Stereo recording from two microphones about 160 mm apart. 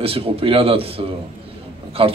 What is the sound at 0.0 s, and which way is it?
A man's voice, 35° right (ahead or behind).